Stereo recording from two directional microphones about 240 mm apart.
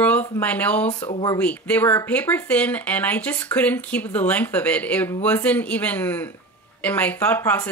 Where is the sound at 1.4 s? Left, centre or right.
Centre.